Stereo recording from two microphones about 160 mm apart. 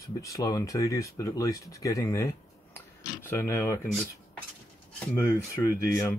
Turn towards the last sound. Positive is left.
turn(degrees=15)  # may be behind; listen again after turning